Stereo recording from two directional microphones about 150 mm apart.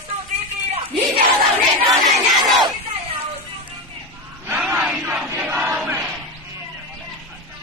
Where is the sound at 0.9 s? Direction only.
40° right (ahead or behind).